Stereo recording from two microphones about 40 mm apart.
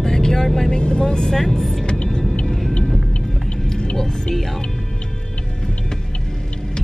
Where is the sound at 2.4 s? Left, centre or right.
Centre.